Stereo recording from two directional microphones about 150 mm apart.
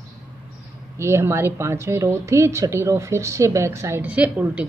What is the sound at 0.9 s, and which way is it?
A woman's voice, 15° right (ahead or behind).